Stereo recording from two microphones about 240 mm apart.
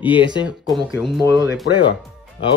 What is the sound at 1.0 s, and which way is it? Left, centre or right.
Speech, centre.